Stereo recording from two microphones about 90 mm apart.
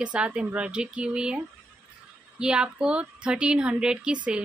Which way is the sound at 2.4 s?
10° right (ahead or behind).